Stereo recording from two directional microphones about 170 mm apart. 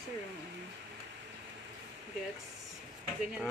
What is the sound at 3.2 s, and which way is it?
Speech, 5° right (ahead or behind).